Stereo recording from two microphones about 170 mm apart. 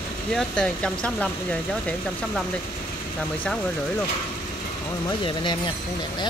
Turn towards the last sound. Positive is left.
turn(degrees=30)  # may be behind; listen again after turning